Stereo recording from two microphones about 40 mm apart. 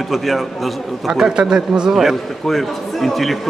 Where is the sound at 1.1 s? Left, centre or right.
Centre.